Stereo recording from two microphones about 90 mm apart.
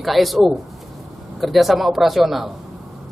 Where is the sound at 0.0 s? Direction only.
Centre (ahead or behind).